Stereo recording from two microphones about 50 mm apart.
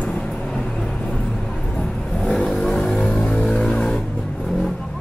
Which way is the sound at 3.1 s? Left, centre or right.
Centre.